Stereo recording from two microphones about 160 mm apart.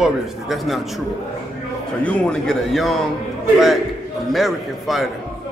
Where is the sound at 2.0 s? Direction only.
5° left (ahead or behind).